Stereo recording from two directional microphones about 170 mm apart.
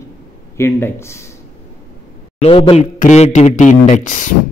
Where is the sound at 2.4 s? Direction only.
35° left (ahead or behind).